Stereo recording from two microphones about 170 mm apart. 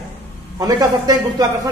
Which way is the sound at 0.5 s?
20° right (ahead or behind).